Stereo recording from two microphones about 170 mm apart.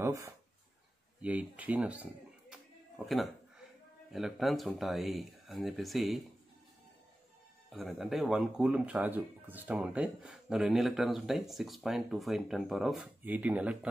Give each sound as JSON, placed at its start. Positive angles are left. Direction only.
{"t": 0.0, "sound": "a sound", "side_deg": -15}
{"t": 1.2, "sound": "speech", "side_deg": -10}
{"t": 4.1, "sound": "speech", "side_deg": 0}
{"t": 7.7, "sound": "speech", "side_deg": 0}